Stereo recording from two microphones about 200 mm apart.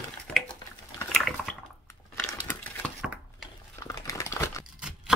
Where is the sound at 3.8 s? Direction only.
15° left (ahead or behind).